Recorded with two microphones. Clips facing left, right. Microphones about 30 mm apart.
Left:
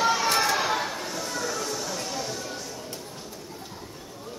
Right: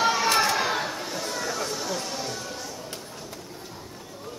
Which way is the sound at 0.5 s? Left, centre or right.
Centre.